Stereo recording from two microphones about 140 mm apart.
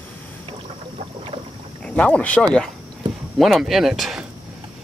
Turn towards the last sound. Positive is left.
turn(degrees=0)  # may be behind; listen again after turning